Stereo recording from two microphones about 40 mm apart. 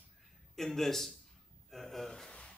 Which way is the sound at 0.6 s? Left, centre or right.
Centre.